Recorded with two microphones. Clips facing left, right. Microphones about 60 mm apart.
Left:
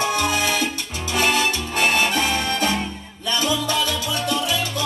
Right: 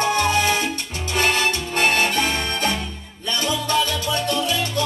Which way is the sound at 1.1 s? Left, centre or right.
Right.